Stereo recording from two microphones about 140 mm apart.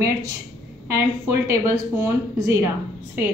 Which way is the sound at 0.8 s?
20° right (ahead or behind).